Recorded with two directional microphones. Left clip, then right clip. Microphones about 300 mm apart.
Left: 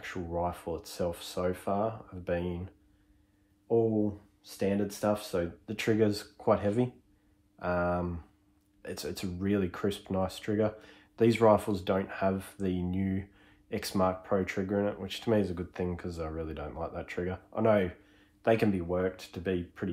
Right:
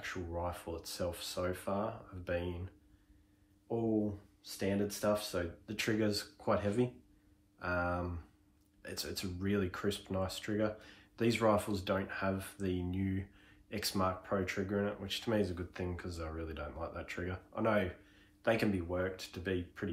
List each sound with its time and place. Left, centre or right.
0.0 s speech: left